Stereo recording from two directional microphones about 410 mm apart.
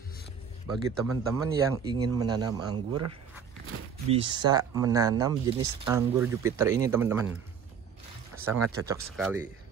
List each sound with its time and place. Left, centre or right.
1.0 s speech: centre
2.9 s speech: right
4.1 s speech: centre
8.5 s speech: right
8.8 s speech: centre